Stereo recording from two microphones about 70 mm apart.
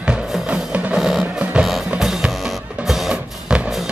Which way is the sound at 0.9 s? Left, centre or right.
Centre.